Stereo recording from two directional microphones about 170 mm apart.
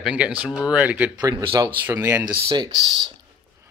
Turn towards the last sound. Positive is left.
turn(degrees=-25)  # may be behind; listen again after turning